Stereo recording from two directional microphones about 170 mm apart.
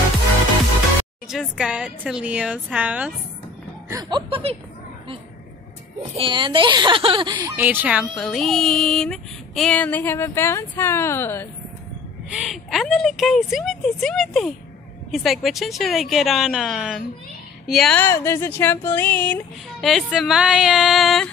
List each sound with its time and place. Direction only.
1.3 s a woman's voice: 5° right (ahead or behind)
3.9 s speech: 30° right (ahead or behind)
6.1 s speech: 30° right (ahead or behind)
7.5 s speech: 10° right (ahead or behind); by 11.4 s 15° left (ahead or behind)
12.3 s speech: centre (ahead or behind)
18.0 s speech: 15° left (ahead or behind); by 21.3 s centre (ahead or behind)